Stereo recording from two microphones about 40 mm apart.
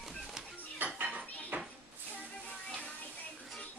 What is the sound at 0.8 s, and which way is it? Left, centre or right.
Dishes, right.